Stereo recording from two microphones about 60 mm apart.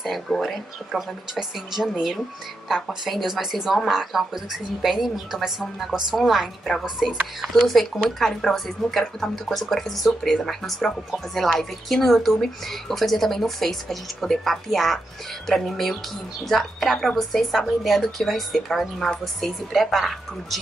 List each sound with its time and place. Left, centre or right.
0.0 s a woman's voice: centre